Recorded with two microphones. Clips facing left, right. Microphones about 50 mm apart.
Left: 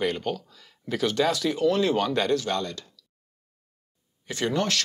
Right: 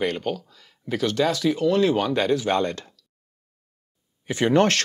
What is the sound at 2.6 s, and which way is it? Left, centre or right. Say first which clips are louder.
Speech: right 7 dB; right.